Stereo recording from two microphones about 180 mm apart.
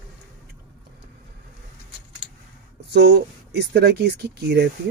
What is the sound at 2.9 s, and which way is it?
Speech, 70° right (ahead or behind).